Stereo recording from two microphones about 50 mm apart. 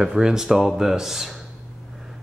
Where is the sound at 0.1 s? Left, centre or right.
Centre.